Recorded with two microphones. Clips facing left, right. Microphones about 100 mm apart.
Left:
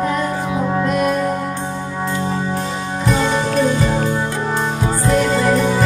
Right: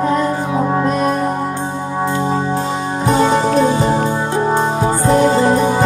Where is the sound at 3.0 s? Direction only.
35° right (ahead or behind).